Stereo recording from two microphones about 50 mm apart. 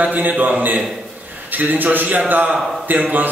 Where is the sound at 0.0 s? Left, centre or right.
Right.